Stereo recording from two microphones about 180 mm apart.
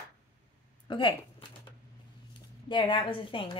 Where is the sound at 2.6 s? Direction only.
25° left (ahead or behind).